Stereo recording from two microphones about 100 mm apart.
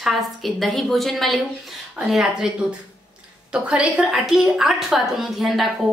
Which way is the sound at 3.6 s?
10° right (ahead or behind).